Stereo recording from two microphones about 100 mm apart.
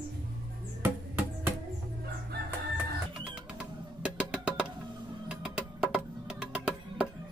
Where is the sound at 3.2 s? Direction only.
10° right (ahead or behind).